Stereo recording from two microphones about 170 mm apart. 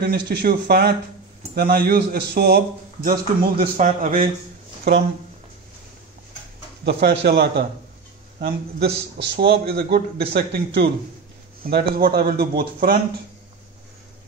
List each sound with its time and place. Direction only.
0.0 s a man's voice: 75° right (ahead or behind)
3.7 s a man's voice: 45° right (ahead or behind)
6.8 s a man's voice: 75° right (ahead or behind)